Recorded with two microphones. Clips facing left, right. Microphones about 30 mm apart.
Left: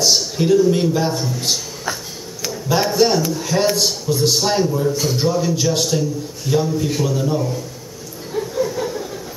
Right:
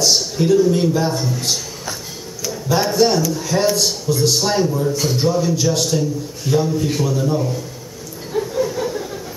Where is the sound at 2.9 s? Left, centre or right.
Centre.